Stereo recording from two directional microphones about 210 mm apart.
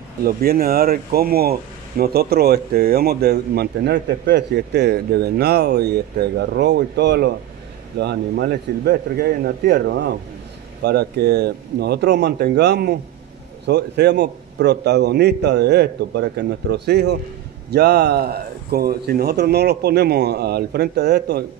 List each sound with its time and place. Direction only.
0.2 s speech: 45° right (ahead or behind)